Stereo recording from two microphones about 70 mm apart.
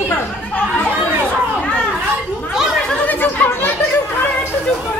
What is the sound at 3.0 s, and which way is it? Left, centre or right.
Chatter, left.